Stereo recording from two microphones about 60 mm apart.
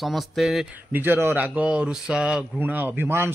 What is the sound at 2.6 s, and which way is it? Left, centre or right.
Speech, right.